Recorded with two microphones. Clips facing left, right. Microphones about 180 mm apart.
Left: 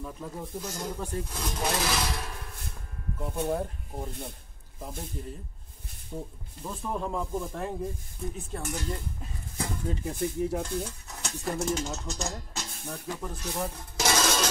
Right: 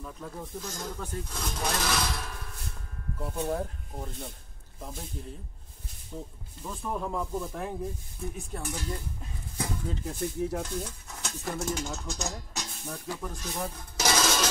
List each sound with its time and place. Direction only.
0.0 s speech: 10° left (ahead or behind)
6.6 s speech: 5° left (ahead or behind)
11.4 s speech: 5° right (ahead or behind)
14.2 s rub: 5° right (ahead or behind)